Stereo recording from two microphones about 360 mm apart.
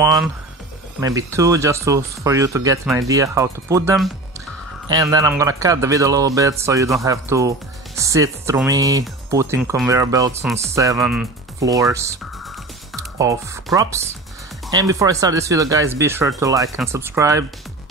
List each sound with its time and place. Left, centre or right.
1.0 s speech: centre
13.2 s speech: centre